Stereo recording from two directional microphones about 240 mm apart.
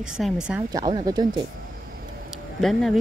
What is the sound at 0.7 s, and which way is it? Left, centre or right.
Speech, centre.